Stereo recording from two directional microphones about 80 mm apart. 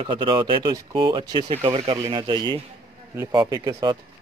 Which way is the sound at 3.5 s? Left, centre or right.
Right.